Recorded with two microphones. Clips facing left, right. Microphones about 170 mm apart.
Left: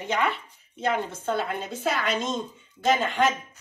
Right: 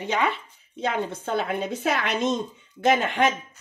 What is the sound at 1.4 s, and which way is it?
Speech, 60° right (ahead or behind).